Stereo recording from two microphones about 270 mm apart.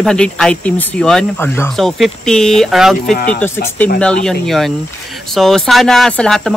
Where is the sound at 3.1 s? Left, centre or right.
Left.